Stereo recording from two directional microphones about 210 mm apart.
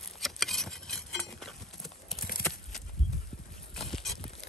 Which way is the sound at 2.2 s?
45° left (ahead or behind).